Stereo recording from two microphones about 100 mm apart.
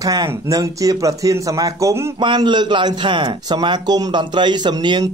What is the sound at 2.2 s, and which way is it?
Speech, 50° right (ahead or behind).